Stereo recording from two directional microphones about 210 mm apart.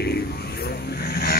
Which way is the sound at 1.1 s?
50° left (ahead or behind).